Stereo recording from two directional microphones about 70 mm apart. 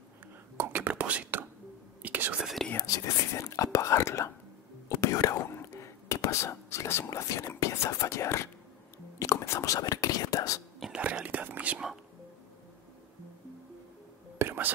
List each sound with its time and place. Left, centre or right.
0.7 s whispering: right
2.4 s whispering: centre
2.9 s speech: left
4.8 s whispering: left
5.4 s speech: left
9.2 s whispering: left
11.0 s speech: right
14.4 s whispering: right